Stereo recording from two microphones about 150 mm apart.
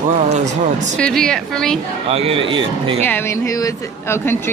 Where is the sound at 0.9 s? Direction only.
5° left (ahead or behind).